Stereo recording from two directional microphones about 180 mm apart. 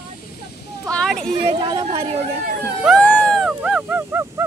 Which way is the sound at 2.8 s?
5° left (ahead or behind).